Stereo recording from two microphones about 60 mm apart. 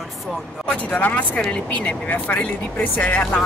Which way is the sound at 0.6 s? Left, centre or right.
Left.